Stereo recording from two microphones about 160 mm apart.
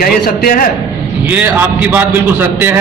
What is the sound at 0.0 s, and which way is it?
Speech, 65° left (ahead or behind).